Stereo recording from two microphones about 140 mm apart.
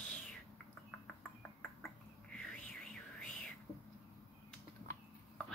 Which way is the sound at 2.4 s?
5° left (ahead or behind).